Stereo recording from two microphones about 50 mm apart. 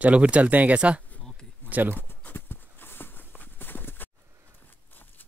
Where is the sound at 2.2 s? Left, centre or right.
Left.